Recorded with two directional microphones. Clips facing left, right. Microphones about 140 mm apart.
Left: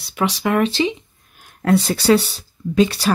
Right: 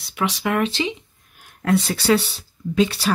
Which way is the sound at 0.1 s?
40° left (ahead or behind).